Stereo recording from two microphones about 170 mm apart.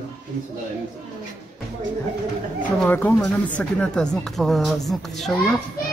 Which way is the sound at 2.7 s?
10° left (ahead or behind).